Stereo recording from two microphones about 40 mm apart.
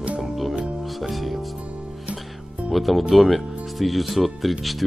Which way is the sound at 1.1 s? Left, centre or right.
Centre.